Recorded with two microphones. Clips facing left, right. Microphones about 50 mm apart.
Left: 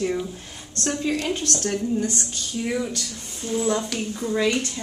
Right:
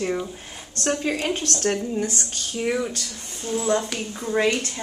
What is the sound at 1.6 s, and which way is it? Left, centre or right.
Speech, right.